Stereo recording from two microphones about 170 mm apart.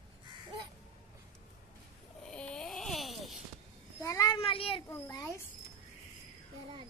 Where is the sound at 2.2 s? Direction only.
5° left (ahead or behind).